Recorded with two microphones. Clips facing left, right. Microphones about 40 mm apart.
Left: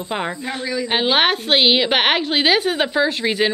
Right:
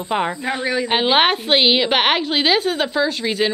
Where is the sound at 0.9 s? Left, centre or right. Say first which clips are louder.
Right 1 dB; centre.